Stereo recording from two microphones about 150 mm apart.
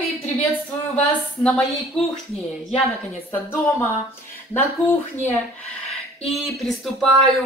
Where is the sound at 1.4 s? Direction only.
Centre (ahead or behind).